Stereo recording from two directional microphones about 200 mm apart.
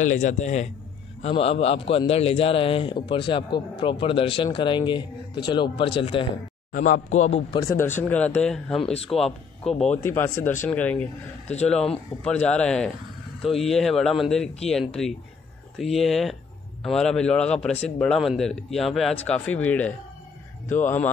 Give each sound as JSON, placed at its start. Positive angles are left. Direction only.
{"t": 0.0, "sound": "a man's voice", "side_deg": 40}
{"t": 6.7, "sound": "speech", "side_deg": 40}
{"t": 7.6, "sound": "speech", "side_deg": 10}